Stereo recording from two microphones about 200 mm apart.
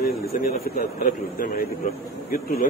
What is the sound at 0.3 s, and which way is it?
A man's voice, 45° left (ahead or behind).